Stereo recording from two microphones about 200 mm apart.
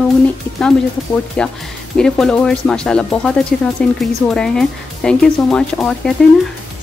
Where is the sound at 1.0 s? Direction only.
Centre (ahead or behind).